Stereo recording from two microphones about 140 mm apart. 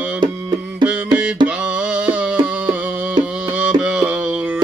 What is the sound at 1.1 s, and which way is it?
Music, 10° right (ahead or behind).